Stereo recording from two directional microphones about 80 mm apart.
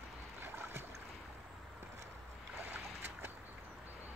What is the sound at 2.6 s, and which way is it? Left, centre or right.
Boat, right.